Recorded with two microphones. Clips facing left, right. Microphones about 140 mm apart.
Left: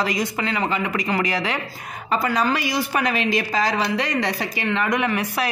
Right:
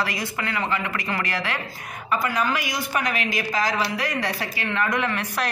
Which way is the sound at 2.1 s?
30° left (ahead or behind).